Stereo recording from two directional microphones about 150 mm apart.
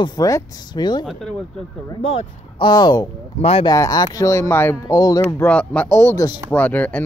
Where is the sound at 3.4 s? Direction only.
40° left (ahead or behind).